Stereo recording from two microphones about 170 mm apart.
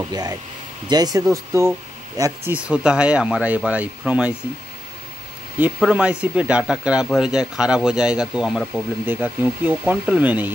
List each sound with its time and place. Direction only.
0.1 s speech: 20° right (ahead or behind)
2.5 s speech: 5° right (ahead or behind)
5.6 s speech: 5° right (ahead or behind)